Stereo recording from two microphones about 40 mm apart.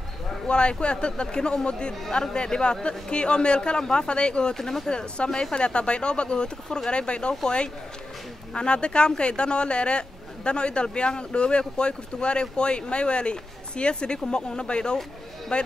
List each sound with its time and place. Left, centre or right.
0.5 s speech: left
4.6 s speech: centre
4.8 s speech: left